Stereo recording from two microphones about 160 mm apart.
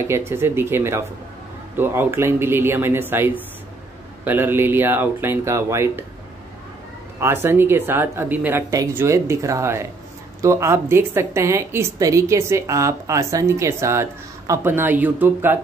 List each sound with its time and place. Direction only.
0.3 s a woman's voice: 15° right (ahead or behind)
7.2 s a woman's voice: 15° right (ahead or behind)